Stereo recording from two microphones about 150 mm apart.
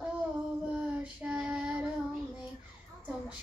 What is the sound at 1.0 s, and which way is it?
Child singing, 10° right (ahead or behind).